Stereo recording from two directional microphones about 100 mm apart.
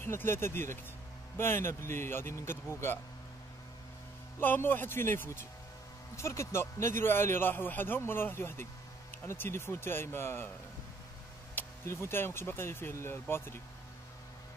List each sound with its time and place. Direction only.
0.0 s a man's voice: 25° left (ahead or behind)
4.4 s a man's voice: 20° left (ahead or behind)
11.5 s speech: 25° left (ahead or behind)